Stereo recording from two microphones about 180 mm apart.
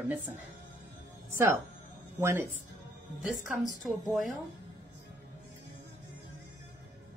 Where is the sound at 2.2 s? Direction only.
15° right (ahead or behind).